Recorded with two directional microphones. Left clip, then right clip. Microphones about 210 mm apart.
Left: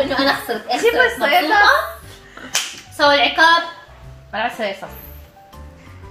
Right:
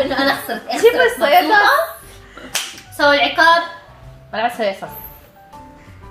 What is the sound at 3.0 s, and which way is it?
Speech, centre (ahead or behind).